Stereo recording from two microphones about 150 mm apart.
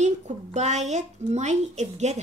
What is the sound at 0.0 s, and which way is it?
A woman's voice, 50° right (ahead or behind).